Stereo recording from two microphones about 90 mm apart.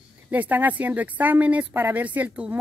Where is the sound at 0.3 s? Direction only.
20° right (ahead or behind).